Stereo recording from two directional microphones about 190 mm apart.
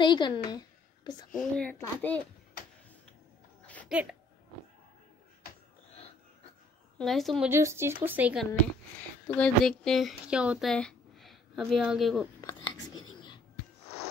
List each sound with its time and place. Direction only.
0.0 s speech: 25° left (ahead or behind)
1.4 s a child's voice: 5° left (ahead or behind)
3.6 s a sound: 5° left (ahead or behind)
3.9 s speech: 5° right (ahead or behind)
7.0 s a woman's voice: centre (ahead or behind)
7.4 s speech: 15° right (ahead or behind)
9.3 s speech: 5° left (ahead or behind)
12.4 s a sound: 20° left (ahead or behind)
12.7 s whispering: 90° left